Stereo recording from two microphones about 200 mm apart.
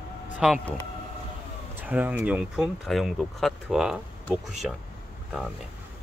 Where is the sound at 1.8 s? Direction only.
10° right (ahead or behind).